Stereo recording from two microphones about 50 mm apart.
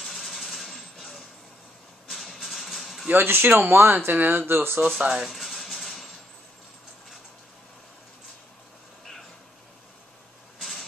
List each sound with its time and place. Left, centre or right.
0.0 s vehicle: centre
2.0 s music: centre
3.3 s speech: right
4.9 s speech: centre
5.3 s music: centre
10.6 s vehicle: centre